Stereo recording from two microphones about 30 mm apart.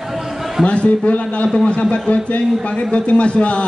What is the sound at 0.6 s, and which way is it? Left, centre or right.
A man's voice, left.